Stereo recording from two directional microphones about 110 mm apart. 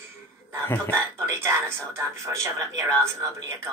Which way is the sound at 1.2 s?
25° right (ahead or behind).